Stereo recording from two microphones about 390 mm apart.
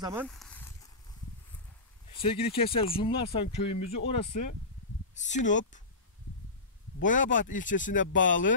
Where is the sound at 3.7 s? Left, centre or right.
Left.